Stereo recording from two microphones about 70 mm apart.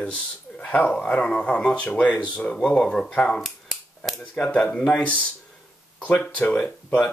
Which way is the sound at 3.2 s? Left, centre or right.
Centre.